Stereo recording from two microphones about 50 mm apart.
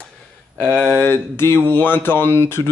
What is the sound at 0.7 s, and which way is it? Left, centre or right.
Speech, right.